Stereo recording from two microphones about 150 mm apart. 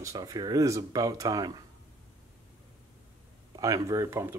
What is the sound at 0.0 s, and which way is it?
Speech, 25° right (ahead or behind).